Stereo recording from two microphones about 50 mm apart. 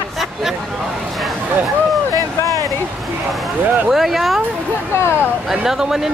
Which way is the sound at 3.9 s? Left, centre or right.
Centre.